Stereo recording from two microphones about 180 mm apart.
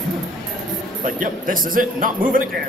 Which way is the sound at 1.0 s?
50° right (ahead or behind).